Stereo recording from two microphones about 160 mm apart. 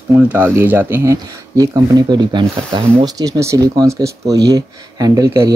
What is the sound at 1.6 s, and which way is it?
Speech, 25° right (ahead or behind).